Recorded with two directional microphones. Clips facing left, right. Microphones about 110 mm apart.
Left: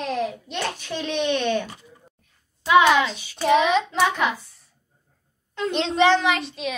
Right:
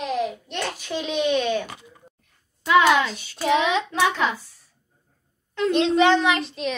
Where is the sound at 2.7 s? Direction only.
20° left (ahead or behind).